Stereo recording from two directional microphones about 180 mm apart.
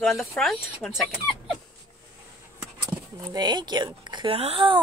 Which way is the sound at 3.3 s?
25° right (ahead or behind).